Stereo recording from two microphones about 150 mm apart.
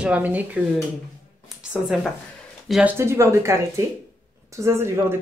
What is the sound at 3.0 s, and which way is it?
Speech, 20° right (ahead or behind).